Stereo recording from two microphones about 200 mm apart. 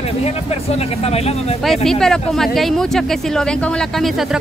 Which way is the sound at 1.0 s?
30° left (ahead or behind).